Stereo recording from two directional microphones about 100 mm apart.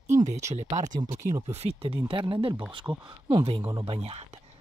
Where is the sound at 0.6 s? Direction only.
45° right (ahead or behind).